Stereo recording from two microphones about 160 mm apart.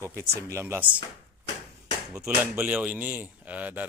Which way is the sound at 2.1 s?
15° right (ahead or behind).